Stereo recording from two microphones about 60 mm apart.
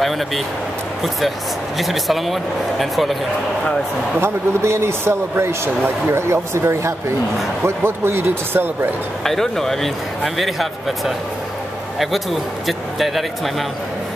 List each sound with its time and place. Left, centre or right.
1.8 s speech: centre
4.2 s a man's voice: right
9.2 s speech: centre